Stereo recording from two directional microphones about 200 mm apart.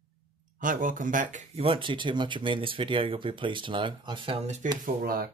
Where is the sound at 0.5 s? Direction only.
45° right (ahead or behind).